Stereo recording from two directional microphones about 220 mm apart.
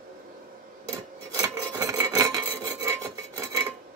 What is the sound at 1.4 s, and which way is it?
Filing, 15° right (ahead or behind).